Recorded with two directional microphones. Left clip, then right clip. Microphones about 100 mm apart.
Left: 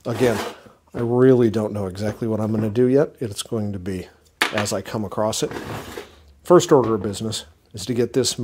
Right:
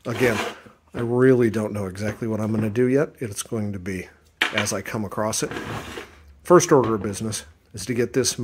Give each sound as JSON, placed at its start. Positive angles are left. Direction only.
{"t": 0.1, "sound": "speech", "side_deg": 35}
{"t": 0.9, "sound": "speech", "side_deg": 10}
{"t": 1.2, "sound": "speech", "side_deg": 30}
{"t": 3.4, "sound": "speech", "side_deg": 20}
{"t": 3.7, "sound": "speech", "side_deg": 35}